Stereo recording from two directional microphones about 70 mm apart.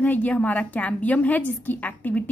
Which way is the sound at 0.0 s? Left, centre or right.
Left.